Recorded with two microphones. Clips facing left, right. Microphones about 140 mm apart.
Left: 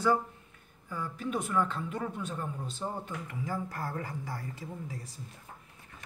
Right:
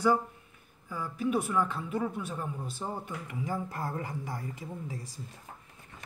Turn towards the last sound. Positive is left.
turn(degrees=-20)  # may be behind; listen again after turning